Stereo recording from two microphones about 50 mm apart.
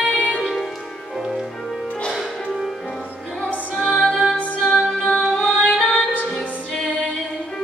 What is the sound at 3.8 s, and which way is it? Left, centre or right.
Music, centre.